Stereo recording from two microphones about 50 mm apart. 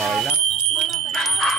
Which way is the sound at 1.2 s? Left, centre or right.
Centre.